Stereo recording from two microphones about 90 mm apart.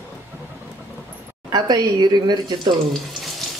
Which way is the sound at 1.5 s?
50° right (ahead or behind).